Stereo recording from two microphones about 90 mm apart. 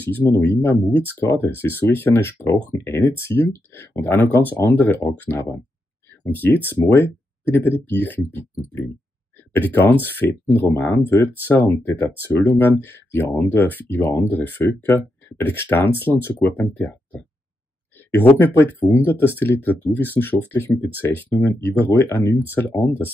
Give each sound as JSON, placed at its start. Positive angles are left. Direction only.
{"t": 0.4, "sound": "speech", "side_deg": 20}
{"t": 9.5, "sound": "speech", "side_deg": 20}